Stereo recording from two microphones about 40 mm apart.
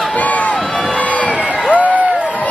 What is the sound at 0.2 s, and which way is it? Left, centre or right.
Crowd, left.